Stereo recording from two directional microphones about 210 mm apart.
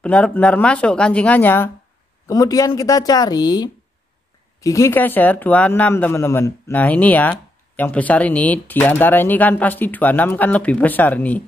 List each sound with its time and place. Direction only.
0.0 s a woman's voice: 5° left (ahead or behind)